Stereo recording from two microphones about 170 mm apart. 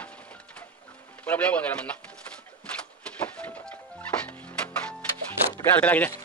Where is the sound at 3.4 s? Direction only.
10° left (ahead or behind).